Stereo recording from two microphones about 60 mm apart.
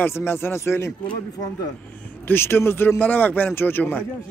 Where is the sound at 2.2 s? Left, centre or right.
Left.